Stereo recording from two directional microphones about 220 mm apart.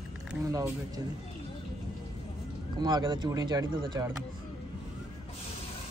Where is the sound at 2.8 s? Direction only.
20° right (ahead or behind).